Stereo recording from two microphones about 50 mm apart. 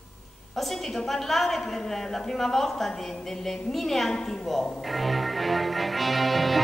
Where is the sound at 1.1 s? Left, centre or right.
Centre.